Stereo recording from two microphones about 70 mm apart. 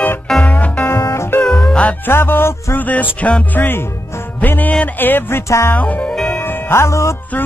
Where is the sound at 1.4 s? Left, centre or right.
Centre.